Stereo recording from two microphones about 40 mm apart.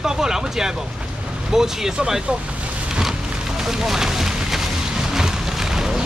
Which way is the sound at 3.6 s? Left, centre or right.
Centre.